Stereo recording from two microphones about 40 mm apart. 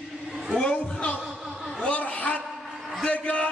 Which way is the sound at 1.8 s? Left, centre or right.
Left.